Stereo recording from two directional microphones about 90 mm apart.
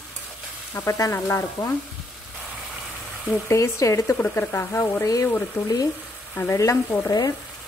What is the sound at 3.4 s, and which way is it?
Speech, 35° left (ahead or behind).